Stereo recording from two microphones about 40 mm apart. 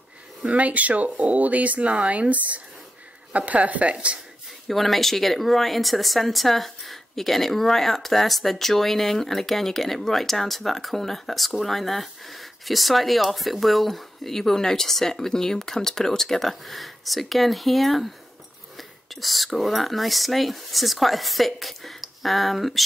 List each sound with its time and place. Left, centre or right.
0.5 s speech: right
4.6 s speech: centre